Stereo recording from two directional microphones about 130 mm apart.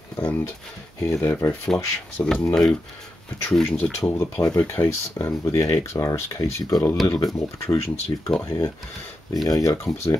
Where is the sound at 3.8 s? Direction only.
55° left (ahead or behind).